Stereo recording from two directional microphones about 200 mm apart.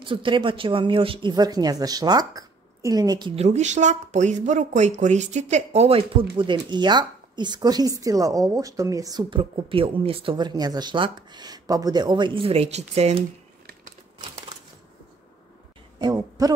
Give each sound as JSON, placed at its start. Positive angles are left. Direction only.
{"t": 0.0, "sound": "a woman's voice", "side_deg": -25}
{"t": 3.3, "sound": "a woman's voice", "side_deg": -35}
{"t": 16.0, "sound": "speech", "side_deg": -20}